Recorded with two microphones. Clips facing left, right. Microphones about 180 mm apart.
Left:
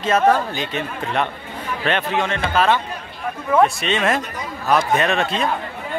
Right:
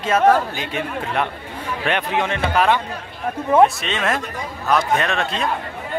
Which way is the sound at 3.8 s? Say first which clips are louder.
Left 3 dB; centre (ahead or behind).